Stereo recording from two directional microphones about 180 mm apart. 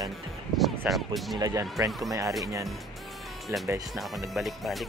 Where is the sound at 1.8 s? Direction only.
Centre (ahead or behind).